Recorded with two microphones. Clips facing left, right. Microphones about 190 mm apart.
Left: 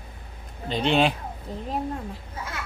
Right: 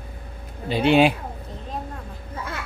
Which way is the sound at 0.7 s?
5° right (ahead or behind).